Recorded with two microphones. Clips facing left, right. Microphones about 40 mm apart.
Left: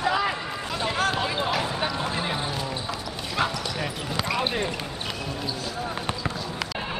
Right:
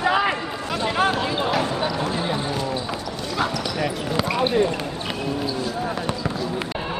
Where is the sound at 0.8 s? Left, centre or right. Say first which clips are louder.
Right 5 dB; centre.